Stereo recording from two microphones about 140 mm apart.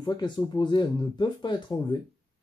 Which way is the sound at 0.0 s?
30° left (ahead or behind).